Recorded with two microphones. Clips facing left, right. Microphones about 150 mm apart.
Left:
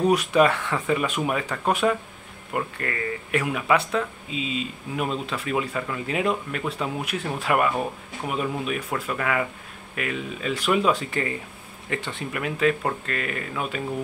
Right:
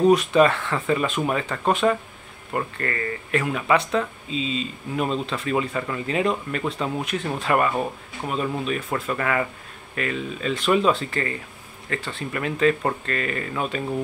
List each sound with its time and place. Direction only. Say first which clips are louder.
0.1 s speech: right 2 dB; 10° left (ahead or behind)
12.4 s speech: right 2 dB; 5° left (ahead or behind)